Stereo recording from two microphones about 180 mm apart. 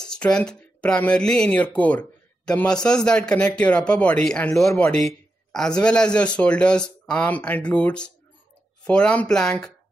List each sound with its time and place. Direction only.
0.1 s speech: 5° left (ahead or behind)